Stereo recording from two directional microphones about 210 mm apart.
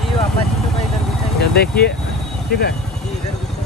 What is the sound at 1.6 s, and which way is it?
Speech, 50° left (ahead or behind).